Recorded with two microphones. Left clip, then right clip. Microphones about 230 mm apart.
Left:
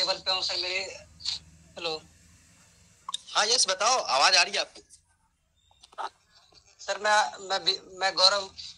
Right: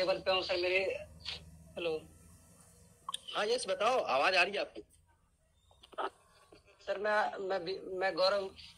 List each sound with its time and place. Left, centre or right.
0.0 s a man's voice: centre
3.1 s a man's voice: centre